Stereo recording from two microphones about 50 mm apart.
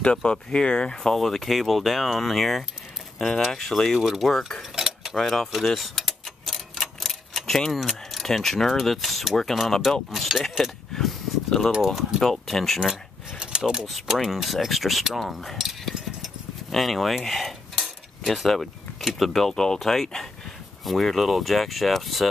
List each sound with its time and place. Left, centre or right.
0.0 s speech: centre
1.1 s speech: centre
4.0 s speech: centre
4.7 s cutlery: centre
5.1 s a sound: centre
10.1 s speech: centre
11.7 s speech: centre
12.2 s speech: centre
13.4 s a sound: centre
13.8 s speech: centre